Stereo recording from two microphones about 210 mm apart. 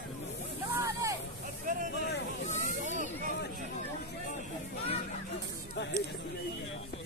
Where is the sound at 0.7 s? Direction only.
15° right (ahead or behind).